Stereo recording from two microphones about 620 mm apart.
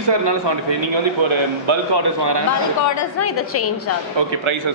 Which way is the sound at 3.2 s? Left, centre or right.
Left.